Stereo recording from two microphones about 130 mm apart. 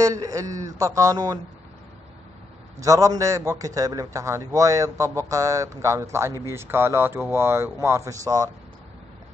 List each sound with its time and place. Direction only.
0.0 s a man's voice: 25° right (ahead or behind)
2.8 s a man's voice: 25° right (ahead or behind)